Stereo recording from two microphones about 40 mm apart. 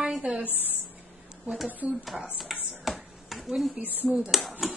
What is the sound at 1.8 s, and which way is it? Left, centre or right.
Speech, right.